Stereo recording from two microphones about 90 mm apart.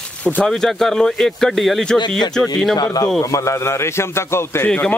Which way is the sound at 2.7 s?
45° left (ahead or behind).